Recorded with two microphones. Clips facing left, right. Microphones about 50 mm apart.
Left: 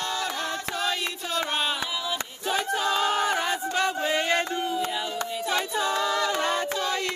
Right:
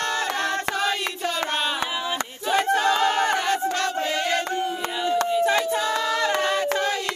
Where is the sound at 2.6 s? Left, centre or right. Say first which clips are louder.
Right 5 dB; right.